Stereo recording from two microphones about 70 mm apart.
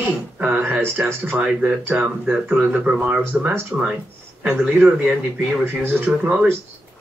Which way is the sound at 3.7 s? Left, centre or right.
Right.